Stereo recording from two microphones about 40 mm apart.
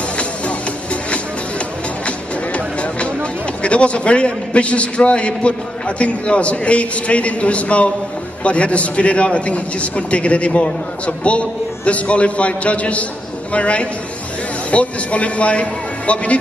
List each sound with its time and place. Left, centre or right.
2.0 s a man's voice: left